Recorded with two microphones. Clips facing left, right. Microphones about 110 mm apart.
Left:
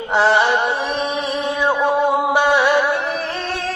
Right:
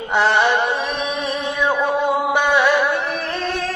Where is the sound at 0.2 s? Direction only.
15° left (ahead or behind).